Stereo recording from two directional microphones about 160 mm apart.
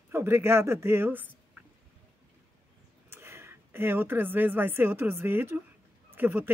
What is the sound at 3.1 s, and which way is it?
A woman's voice, 15° right (ahead or behind).